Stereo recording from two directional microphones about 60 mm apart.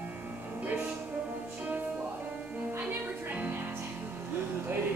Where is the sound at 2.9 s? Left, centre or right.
Right.